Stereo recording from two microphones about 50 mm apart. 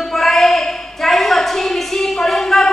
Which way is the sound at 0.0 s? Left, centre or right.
Centre.